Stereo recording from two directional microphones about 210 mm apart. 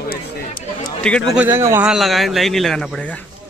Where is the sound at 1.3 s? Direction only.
10° right (ahead or behind).